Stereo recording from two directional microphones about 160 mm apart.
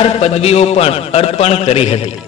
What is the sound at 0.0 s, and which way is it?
A man's voice, 40° left (ahead or behind).